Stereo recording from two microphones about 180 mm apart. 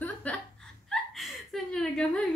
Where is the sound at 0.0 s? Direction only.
10° left (ahead or behind).